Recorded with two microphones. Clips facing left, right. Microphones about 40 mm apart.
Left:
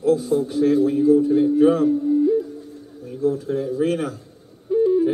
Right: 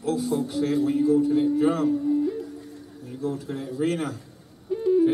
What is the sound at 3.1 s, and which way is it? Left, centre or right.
Speech, right.